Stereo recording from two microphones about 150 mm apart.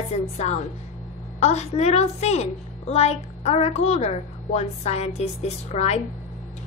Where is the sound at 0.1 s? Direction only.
45° left (ahead or behind).